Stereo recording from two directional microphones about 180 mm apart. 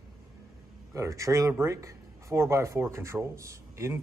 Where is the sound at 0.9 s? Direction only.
15° right (ahead or behind).